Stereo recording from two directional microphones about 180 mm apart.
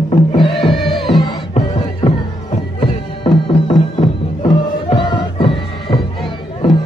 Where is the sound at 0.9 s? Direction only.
Centre (ahead or behind).